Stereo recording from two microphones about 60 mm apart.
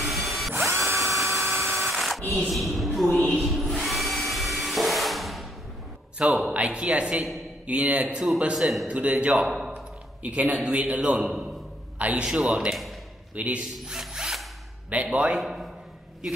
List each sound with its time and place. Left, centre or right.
0.0 s drill: centre
0.6 s drill: right
1.4 s drill: centre
2.5 s a sound: centre
3.4 s dental drill: centre
6.2 s speech: centre
6.5 s speech: centre
8.5 s a man's voice: centre
8.8 s a man's voice: right
13.7 s tools: centre
14.9 s speech: right
15.2 s a man's voice: centre